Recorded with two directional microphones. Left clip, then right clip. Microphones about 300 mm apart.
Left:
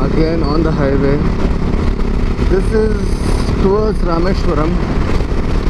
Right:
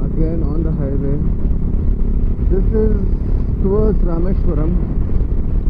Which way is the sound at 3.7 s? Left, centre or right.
Centre.